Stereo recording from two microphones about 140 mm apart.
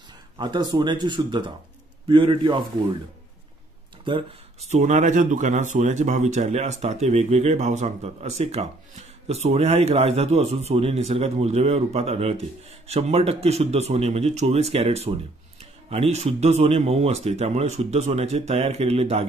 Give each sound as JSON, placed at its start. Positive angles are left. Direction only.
{"t": 0.4, "sound": "speech", "side_deg": -30}
{"t": 4.0, "sound": "a sound", "side_deg": -35}
{"t": 4.6, "sound": "speech", "side_deg": -55}